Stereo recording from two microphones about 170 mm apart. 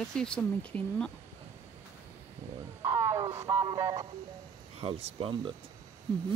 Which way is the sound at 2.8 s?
15° right (ahead or behind).